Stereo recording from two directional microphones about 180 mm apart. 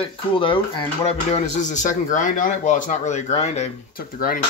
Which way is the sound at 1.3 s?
40° left (ahead or behind).